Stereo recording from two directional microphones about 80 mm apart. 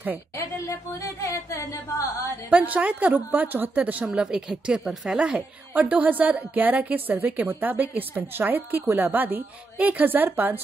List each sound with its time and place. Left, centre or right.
0.4 s speech: left
2.5 s a woman's voice: centre
4.1 s speech: centre
5.2 s a woman's voice: centre